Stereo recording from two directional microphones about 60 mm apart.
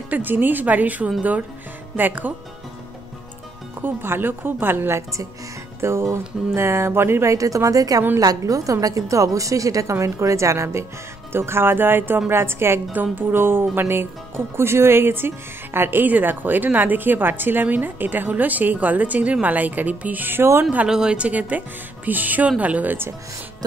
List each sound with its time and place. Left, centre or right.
0.1 s a woman's voice: right
3.8 s a woman's voice: right
7.3 s a woman's voice: right
12.9 s a woman's voice: right
20.9 s a woman's voice: centre